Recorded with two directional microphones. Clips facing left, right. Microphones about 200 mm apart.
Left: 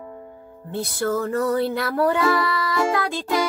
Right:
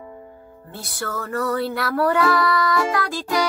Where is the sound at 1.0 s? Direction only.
20° left (ahead or behind).